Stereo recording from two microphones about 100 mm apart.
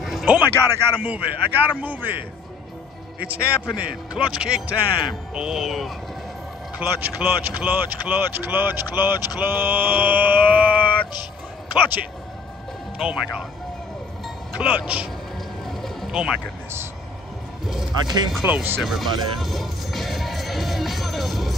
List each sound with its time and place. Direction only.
0.0 s music: 5° right (ahead or behind)
0.3 s a man's voice: 20° right (ahead or behind)
1.0 s mantra: 15° right (ahead or behind)
3.3 s mantra: 10° right (ahead or behind)
5.3 s speech: 5° right (ahead or behind)
6.8 s speech: 20° right (ahead or behind)
9.4 s mantra: 20° right (ahead or behind)
13.0 s mantra: 10° right (ahead or behind)
14.6 s mantra: 10° right (ahead or behind)
15.6 s boat: 5° left (ahead or behind)
16.1 s speech: 5° right (ahead or behind)
18.0 s speech: 45° right (ahead or behind)
18.5 s speech: 20° right (ahead or behind)
18.8 s speech: centre (ahead or behind)